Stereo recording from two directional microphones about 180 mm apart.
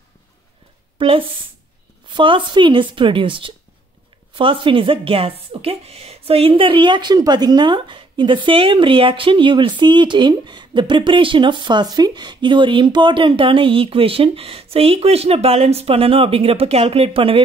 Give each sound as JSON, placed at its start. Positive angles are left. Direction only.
{"t": 0.9, "sound": "a woman's voice", "side_deg": -30}